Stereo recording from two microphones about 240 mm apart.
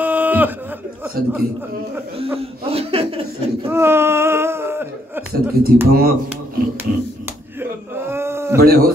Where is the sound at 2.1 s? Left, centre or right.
Right.